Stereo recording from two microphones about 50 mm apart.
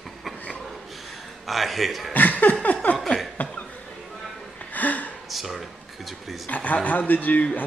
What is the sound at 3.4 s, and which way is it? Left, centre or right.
Cough, left.